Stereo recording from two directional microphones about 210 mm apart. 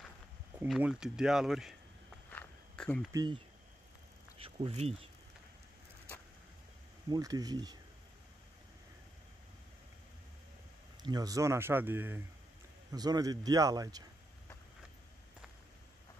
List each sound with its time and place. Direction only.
0.7 s speech: 5° right (ahead or behind)
2.3 s insect: 5° left (ahead or behind)
3.1 s speech: 20° right (ahead or behind)
7.1 s speech: 15° right (ahead or behind)
11.0 s speech: 20° right (ahead or behind)